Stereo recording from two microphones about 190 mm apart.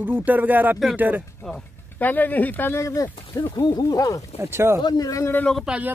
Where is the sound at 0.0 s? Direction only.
10° right (ahead or behind).